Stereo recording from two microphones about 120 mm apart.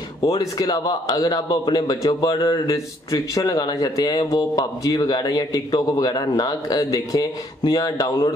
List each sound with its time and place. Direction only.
0.3 s a man's voice: 30° left (ahead or behind)